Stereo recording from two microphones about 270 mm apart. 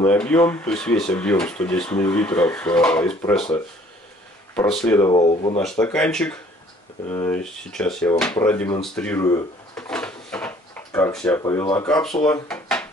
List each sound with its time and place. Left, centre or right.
0.0 s speech: centre
4.8 s speech: centre
5.8 s speech: centre
12.3 s a sound: centre